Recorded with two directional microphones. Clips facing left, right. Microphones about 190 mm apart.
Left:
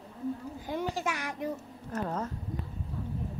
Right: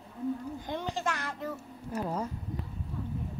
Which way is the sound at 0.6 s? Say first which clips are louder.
Left 1 dB; 10° left (ahead or behind).